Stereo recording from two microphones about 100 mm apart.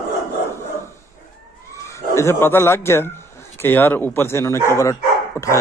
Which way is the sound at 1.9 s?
25° left (ahead or behind).